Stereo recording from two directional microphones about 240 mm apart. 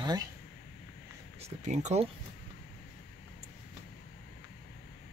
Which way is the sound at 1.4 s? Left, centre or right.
Right.